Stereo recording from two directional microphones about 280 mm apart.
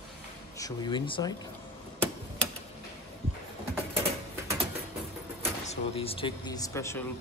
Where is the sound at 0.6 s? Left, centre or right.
Centre.